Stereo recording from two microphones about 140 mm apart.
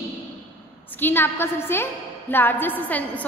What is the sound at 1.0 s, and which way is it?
A woman's voice, 15° left (ahead or behind).